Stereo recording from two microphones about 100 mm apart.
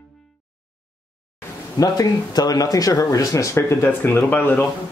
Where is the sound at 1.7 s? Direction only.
40° left (ahead or behind); by 4.6 s 20° left (ahead or behind).